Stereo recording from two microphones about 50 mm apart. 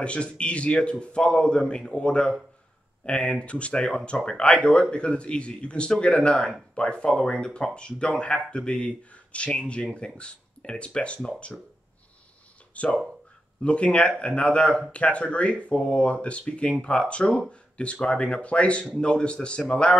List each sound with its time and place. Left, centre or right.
0.0 s speech: left
12.7 s speech: left